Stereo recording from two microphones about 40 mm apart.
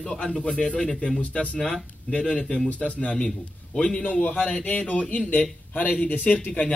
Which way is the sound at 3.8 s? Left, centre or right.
Centre.